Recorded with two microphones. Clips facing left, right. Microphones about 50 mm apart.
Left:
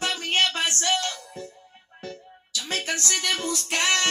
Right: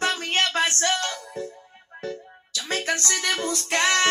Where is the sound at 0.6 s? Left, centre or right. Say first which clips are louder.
Right 1 dB; right.